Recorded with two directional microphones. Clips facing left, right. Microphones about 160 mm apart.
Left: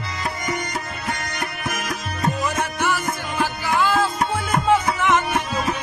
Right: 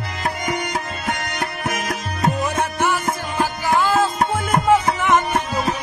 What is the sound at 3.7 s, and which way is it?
Music, 45° right (ahead or behind).